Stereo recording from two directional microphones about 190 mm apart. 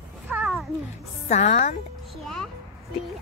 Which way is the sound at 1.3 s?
40° left (ahead or behind).